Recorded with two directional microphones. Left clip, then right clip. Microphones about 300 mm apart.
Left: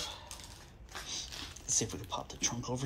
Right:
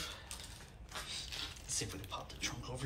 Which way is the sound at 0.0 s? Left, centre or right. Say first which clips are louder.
Left 3 dB; centre.